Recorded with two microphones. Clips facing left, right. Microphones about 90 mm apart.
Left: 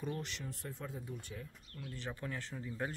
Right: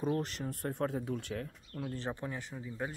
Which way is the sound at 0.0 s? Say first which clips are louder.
Right 8 dB; 40° right (ahead or behind).